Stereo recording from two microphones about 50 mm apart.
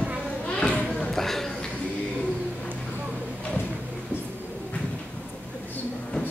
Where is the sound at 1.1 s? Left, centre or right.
Centre.